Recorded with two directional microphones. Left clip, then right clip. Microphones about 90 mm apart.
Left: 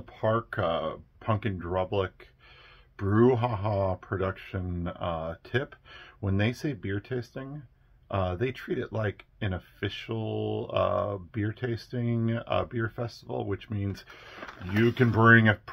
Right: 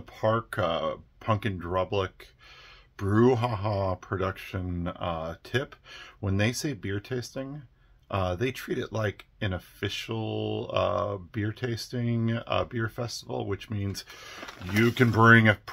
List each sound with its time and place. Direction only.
0.2 s speech: 30° right (ahead or behind)
14.6 s speech: 45° right (ahead or behind)